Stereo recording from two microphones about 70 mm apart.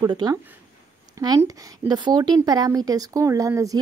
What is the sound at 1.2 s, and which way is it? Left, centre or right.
Speech, right.